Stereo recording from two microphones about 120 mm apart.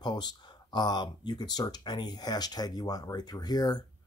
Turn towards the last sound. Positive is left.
turn(degrees=35)  # may be behind; listen again after turning